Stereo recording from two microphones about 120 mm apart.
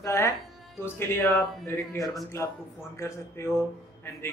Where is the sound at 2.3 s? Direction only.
25° left (ahead or behind).